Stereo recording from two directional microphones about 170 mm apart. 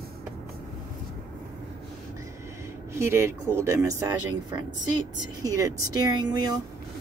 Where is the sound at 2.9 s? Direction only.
15° right (ahead or behind).